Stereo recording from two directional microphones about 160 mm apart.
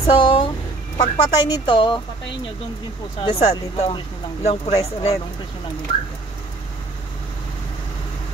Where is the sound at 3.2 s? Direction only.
40° left (ahead or behind).